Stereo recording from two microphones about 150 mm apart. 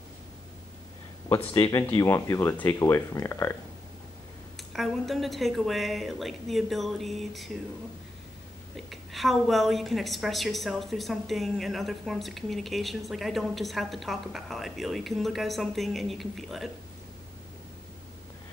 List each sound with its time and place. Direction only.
1.5 s speech: 25° left (ahead or behind)
4.6 s a woman's voice: centre (ahead or behind)
8.7 s a woman's voice: centre (ahead or behind)